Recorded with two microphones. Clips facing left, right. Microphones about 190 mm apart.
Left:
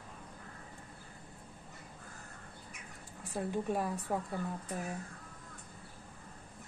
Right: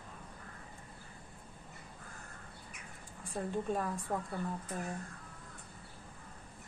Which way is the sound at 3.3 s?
5° left (ahead or behind).